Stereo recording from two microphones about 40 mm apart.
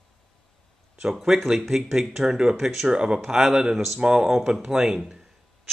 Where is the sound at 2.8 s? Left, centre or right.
Right.